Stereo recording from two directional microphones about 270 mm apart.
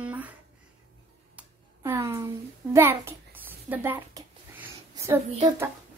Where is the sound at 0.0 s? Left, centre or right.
Centre.